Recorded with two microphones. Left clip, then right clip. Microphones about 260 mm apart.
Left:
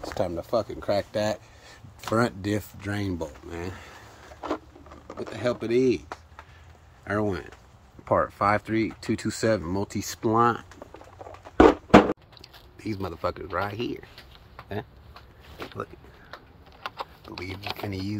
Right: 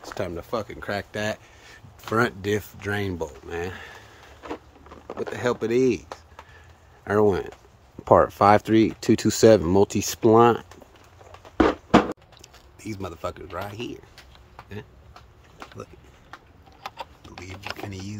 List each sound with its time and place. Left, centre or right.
0.2 s speech: centre
5.0 s speech: centre
7.1 s speech: right
11.5 s a sound: left
12.4 s speech: centre
17.8 s speech: centre